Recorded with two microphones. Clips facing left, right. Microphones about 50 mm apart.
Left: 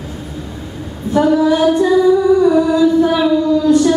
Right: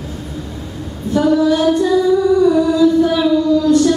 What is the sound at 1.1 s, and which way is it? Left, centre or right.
Female singing, centre.